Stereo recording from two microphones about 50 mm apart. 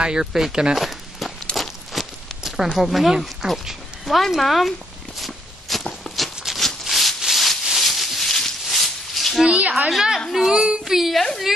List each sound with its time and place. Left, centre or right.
0.0 s speech: centre
0.7 s walk: centre
5.2 s a sound: centre
9.6 s a sound: right
9.8 s a woman's voice: centre
10.5 s speech: centre
10.9 s a woman's voice: centre